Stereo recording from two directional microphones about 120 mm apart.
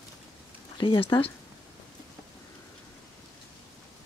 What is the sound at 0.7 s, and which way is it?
Speech, 40° left (ahead or behind).